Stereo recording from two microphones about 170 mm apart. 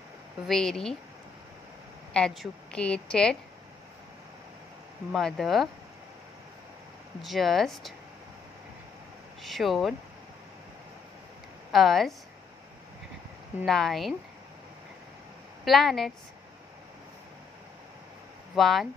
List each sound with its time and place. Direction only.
0.5 s a woman's voice: centre (ahead or behind)
2.1 s a woman's voice: centre (ahead or behind)
5.1 s a woman's voice: centre (ahead or behind)
7.2 s a woman's voice: centre (ahead or behind)
9.4 s a woman's voice: centre (ahead or behind)
11.7 s a woman's voice: centre (ahead or behind)
13.7 s a woman's voice: centre (ahead or behind)
15.6 s a woman's voice: centre (ahead or behind)
18.5 s speech: centre (ahead or behind)